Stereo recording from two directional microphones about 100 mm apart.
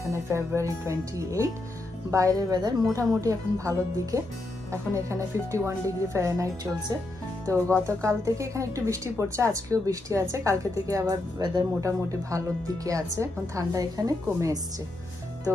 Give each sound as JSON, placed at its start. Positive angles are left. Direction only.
{"t": 0.1, "sound": "a woman's voice", "side_deg": -25}
{"t": 8.0, "sound": "a woman's voice", "side_deg": -30}
{"t": 15.5, "sound": "speech", "side_deg": -25}